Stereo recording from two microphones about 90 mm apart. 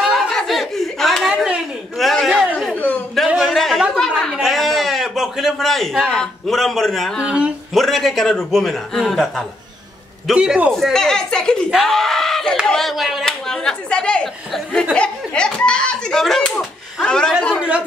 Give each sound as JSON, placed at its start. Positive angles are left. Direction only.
{"t": 0.0, "sound": "snicker", "side_deg": 0}
{"t": 1.3, "sound": "a sound", "side_deg": -5}
{"t": 2.7, "sound": "a sound", "side_deg": 20}
{"t": 3.3, "sound": "a sound", "side_deg": 0}
{"t": 4.2, "sound": "speech", "side_deg": 5}
{"t": 7.2, "sound": "a man's voice", "side_deg": -10}
{"t": 7.7, "sound": "a man's voice", "side_deg": 0}
{"t": 10.3, "sound": "a man's voice", "side_deg": -10}
{"t": 10.7, "sound": "a man's voice", "side_deg": 5}
{"t": 17.5, "sound": "a man's voice", "side_deg": -10}